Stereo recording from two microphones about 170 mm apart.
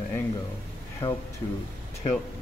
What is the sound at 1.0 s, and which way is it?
Speech, 30° left (ahead or behind).